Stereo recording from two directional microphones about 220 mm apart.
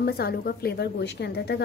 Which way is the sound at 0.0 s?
45° left (ahead or behind).